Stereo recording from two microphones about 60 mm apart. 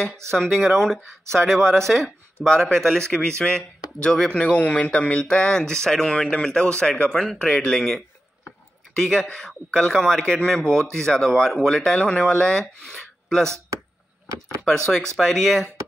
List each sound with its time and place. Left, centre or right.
0.0 s a man's voice: centre
15.1 s speech: centre